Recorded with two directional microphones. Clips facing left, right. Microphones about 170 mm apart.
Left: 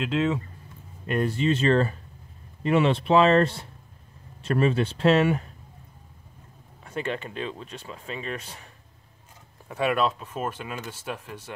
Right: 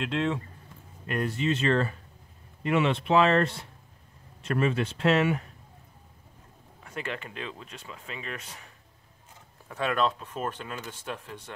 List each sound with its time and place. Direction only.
0.0 s speech: centre (ahead or behind)
1.0 s speech: 30° left (ahead or behind)
6.8 s speech: 30° left (ahead or behind)
9.7 s speech: 10° left (ahead or behind)